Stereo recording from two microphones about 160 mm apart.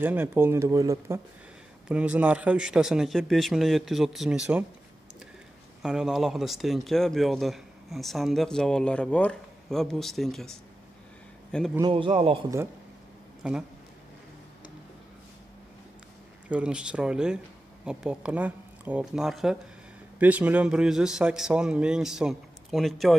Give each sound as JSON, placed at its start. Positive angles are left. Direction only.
{"t": 0.0, "sound": "speech", "side_deg": -10}
{"t": 1.9, "sound": "speech", "side_deg": -5}
{"t": 5.8, "sound": "speech", "side_deg": -5}
{"t": 11.8, "sound": "a man's voice", "side_deg": -35}
{"t": 13.4, "sound": "speech", "side_deg": -5}
{"t": 16.4, "sound": "speech", "side_deg": -5}